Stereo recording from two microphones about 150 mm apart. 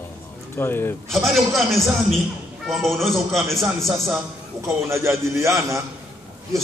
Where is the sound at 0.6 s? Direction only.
15° left (ahead or behind).